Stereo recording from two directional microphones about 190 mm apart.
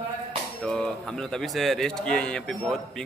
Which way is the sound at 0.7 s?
5° left (ahead or behind).